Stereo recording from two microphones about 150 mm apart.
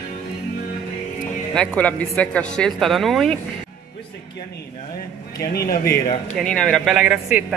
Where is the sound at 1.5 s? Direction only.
5° left (ahead or behind).